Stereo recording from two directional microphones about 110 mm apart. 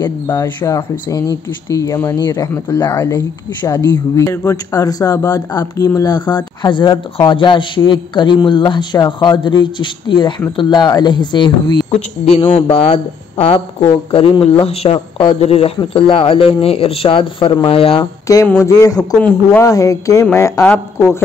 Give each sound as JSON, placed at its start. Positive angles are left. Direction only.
{"t": 0.0, "sound": "speech", "side_deg": 35}
{"t": 11.9, "sound": "speech", "side_deg": 60}
{"t": 18.2, "sound": "a sound", "side_deg": 30}
{"t": 18.6, "sound": "speech", "side_deg": 30}
{"t": 20.6, "sound": "speech", "side_deg": 15}